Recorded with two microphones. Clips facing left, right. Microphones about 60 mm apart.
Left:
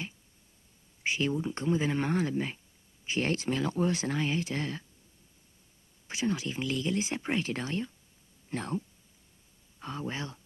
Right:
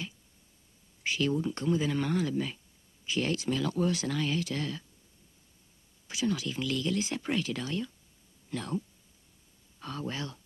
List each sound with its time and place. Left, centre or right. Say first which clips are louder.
1.0 s speech: right 1 dB; left
6.0 s speech: even; left